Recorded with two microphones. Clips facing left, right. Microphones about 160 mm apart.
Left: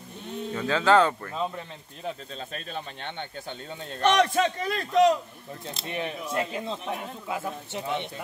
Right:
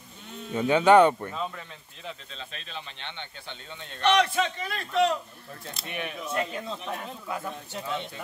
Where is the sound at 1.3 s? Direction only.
25° left (ahead or behind).